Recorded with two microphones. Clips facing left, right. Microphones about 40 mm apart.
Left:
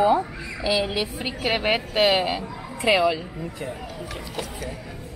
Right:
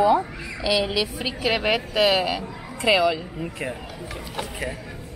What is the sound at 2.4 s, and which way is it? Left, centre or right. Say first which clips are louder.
Speech: even; right.